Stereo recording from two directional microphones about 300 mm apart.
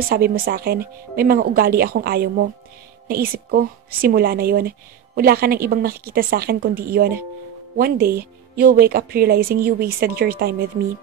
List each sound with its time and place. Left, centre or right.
0.1 s a woman's voice: right